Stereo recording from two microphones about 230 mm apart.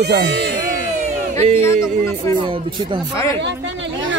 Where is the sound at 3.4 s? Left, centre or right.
Right.